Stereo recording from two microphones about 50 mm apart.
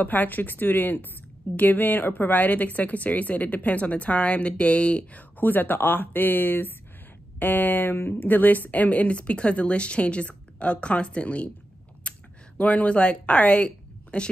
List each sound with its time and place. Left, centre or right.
0.0 s a woman's voice: left
5.4 s a woman's voice: left
12.1 s a sound: left
12.5 s speech: left